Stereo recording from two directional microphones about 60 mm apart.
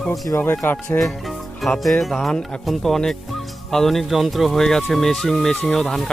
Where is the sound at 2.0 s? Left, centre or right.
Centre.